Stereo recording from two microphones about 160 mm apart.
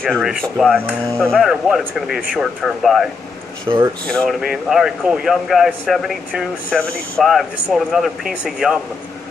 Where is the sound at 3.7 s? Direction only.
15° right (ahead or behind).